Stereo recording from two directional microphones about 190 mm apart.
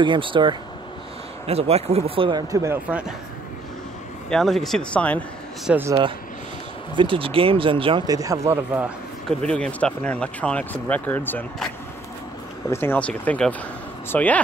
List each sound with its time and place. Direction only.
0.0 s speech: 25° right (ahead or behind); by 3.1 s 10° right (ahead or behind)
4.3 s speech: centre (ahead or behind)
5.7 s speech: 10° right (ahead or behind)
7.0 s speech: 25° right (ahead or behind)
9.4 s speech: 5° left (ahead or behind)